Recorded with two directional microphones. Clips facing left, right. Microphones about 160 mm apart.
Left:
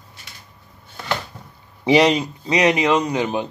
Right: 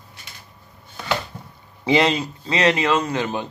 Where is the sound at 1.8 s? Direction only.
15° left (ahead or behind).